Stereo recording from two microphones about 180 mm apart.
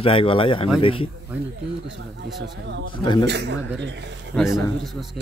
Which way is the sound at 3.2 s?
70° right (ahead or behind).